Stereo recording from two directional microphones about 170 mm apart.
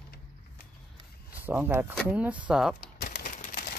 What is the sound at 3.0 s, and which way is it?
Bird, 70° left (ahead or behind).